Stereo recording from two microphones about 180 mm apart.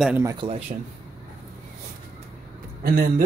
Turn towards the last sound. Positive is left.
turn(degrees=-55)  # may be behind; listen again after turning